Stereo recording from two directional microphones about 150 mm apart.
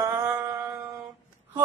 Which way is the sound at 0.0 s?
15° right (ahead or behind).